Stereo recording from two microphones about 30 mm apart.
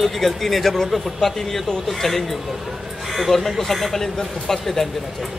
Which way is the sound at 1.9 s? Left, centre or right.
Centre.